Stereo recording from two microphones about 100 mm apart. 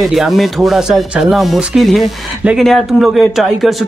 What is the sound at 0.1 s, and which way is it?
Speech, centre (ahead or behind).